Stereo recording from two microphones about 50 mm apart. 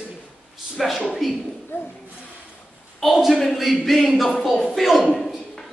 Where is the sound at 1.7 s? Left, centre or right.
Left.